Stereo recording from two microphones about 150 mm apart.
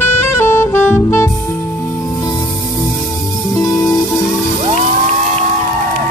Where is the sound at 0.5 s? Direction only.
15° left (ahead or behind).